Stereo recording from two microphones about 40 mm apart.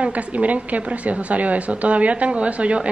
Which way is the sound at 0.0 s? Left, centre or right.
Right.